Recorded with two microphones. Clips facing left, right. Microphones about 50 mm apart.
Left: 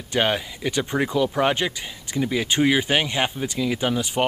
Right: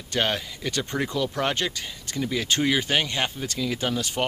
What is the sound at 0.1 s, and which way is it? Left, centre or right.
Speech, centre.